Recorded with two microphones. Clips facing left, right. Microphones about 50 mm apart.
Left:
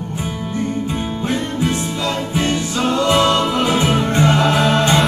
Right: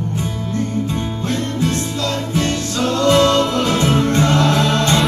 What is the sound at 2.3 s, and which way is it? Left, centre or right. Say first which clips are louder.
Music: left 1 dB; centre.